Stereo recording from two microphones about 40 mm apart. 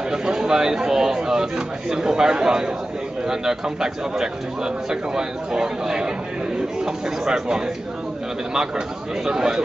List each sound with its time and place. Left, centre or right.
0.1 s a man's voice: centre